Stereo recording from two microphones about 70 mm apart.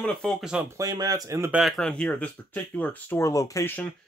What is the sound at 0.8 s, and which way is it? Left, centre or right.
Speech, right.